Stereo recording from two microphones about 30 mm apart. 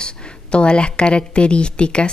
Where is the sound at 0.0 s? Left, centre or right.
Left.